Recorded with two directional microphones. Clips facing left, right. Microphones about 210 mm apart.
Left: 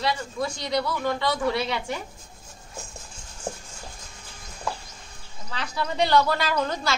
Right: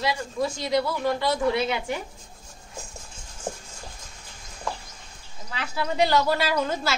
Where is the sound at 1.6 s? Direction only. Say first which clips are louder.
Right 2 dB; 20° right (ahead or behind).